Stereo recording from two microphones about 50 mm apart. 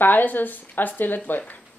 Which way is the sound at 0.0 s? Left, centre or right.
Left.